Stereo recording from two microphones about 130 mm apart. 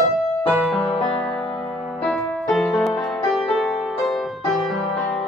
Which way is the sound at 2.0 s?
Centre (ahead or behind).